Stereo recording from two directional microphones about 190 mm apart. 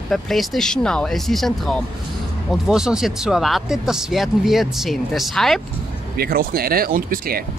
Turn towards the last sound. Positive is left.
turn(degrees=-50)  # may be behind; listen again after turning